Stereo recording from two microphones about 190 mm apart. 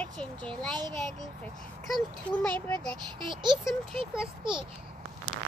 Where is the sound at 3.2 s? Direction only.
25° right (ahead or behind).